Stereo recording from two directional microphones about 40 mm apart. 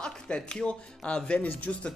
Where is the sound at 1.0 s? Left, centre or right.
Left.